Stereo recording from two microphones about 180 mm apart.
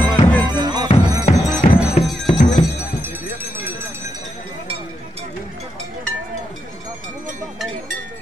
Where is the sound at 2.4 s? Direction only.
40° left (ahead or behind).